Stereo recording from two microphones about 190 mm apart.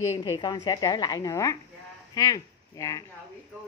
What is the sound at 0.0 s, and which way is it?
A woman's voice, 20° left (ahead or behind).